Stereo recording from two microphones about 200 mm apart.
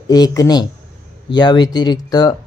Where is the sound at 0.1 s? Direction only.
20° left (ahead or behind).